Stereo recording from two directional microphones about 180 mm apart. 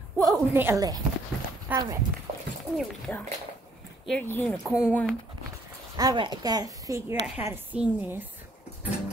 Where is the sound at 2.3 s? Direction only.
40° right (ahead or behind).